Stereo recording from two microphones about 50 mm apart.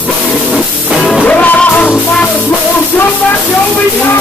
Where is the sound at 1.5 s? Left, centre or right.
Left.